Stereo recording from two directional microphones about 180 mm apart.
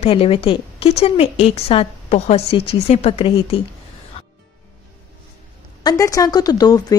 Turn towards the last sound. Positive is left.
turn(degrees=20)  # may be behind; listen again after turning